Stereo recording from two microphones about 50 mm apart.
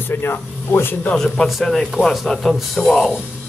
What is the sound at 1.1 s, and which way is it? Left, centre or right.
A man's voice, centre.